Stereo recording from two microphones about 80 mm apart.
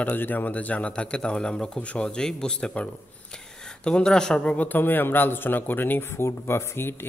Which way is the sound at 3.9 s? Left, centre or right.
Centre.